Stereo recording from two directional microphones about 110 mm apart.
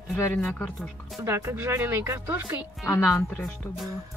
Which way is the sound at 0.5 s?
15° left (ahead or behind).